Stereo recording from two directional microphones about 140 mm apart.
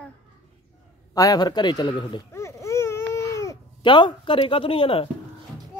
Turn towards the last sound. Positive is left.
turn(degrees=40)  # may be behind; listen again after turning